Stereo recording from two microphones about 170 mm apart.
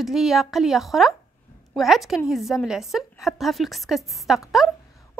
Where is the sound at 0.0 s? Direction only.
Centre (ahead or behind).